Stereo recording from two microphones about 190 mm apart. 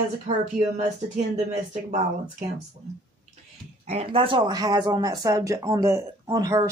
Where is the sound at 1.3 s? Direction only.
40° right (ahead or behind).